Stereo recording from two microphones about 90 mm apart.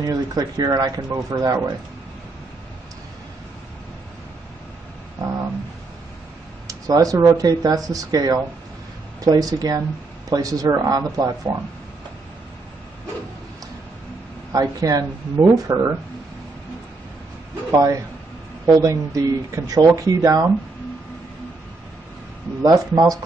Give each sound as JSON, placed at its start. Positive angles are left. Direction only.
{"t": 0.0, "sound": "speech", "side_deg": -40}
{"t": 6.7, "sound": "speech", "side_deg": -40}
{"t": 14.5, "sound": "speech", "side_deg": -40}
{"t": 17.6, "sound": "speech", "side_deg": -40}
{"t": 22.6, "sound": "speech", "side_deg": -45}